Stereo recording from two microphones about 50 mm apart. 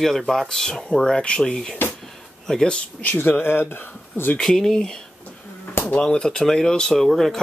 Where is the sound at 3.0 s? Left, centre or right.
Left.